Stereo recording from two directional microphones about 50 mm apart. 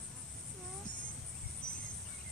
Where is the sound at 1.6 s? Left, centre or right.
Centre.